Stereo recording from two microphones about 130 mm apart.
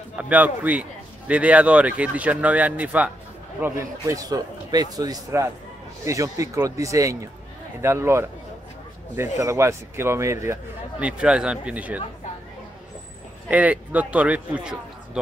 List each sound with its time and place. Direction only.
0.1 s a man's voice: 10° right (ahead or behind)
3.6 s a man's voice: 25° right (ahead or behind)
9.4 s a man's voice: 20° right (ahead or behind)
11.0 s a man's voice: 10° right (ahead or behind)
13.5 s a man's voice: 10° right (ahead or behind)